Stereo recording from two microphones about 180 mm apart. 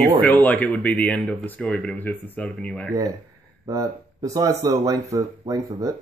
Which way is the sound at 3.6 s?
20° right (ahead or behind).